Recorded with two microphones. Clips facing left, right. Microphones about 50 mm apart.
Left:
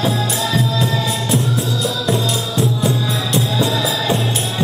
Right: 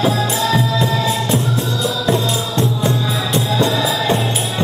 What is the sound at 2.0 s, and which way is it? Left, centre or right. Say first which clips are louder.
Music: right 1 dB; centre.